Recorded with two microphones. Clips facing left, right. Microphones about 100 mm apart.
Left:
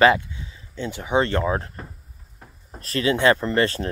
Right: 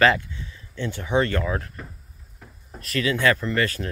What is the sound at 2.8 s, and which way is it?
Speech, 30° left (ahead or behind).